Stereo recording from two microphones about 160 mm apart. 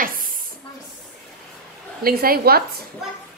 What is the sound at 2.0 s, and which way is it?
Speech, 70° right (ahead or behind).